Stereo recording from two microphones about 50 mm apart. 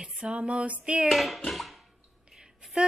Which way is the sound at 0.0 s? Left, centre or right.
Right.